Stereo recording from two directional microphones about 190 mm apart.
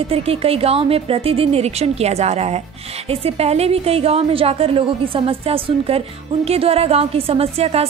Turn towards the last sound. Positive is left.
turn(degrees=-30)  # may be behind; listen again after turning